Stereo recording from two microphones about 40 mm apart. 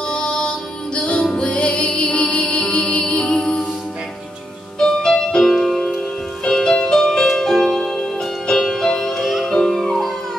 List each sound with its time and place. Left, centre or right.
0.1 s music: left
4.7 s music: centre
9.2 s music: centre
9.5 s music: centre